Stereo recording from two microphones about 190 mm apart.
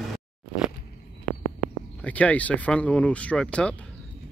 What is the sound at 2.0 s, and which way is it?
Speech, 5° left (ahead or behind).